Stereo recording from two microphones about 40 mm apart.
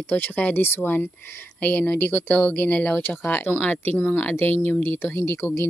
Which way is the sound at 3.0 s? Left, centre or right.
Left.